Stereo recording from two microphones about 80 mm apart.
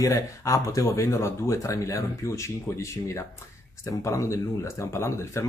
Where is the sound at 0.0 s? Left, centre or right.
Left.